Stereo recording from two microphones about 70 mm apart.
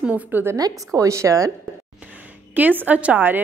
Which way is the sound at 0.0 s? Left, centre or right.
Right.